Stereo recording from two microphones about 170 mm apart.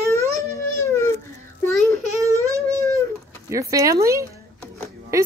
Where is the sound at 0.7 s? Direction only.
15° left (ahead or behind).